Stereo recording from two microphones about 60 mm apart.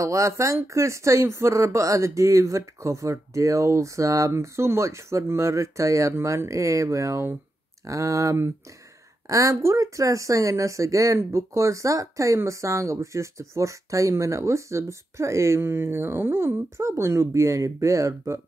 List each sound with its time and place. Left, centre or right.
0.0 s speech: right
4.3 s speech: right